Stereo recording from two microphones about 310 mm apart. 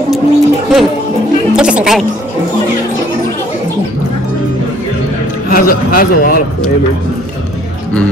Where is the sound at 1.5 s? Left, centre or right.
Centre.